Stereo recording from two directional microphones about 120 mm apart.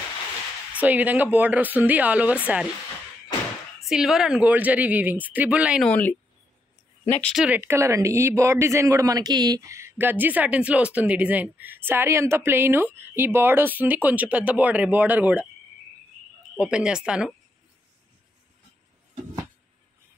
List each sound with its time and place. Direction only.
0.7 s speech: 10° right (ahead or behind)
3.9 s speech: 5° right (ahead or behind)
5.8 s speech: 10° left (ahead or behind)
7.3 s speech: 10° right (ahead or behind)
16.5 s speech: 5° right (ahead or behind)